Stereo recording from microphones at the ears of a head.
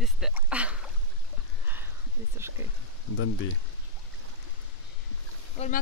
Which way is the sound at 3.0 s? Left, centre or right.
Left.